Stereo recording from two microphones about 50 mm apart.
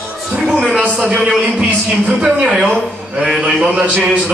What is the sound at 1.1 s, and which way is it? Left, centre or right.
Speech, centre.